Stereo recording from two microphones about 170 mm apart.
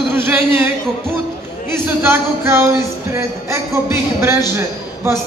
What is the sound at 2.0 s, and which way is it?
A man's voice, 15° right (ahead or behind).